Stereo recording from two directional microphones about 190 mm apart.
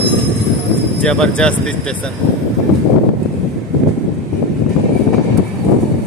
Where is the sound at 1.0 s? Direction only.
5° left (ahead or behind).